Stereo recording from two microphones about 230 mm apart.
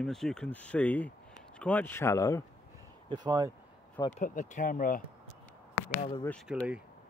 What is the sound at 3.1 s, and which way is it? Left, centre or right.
Speech, centre.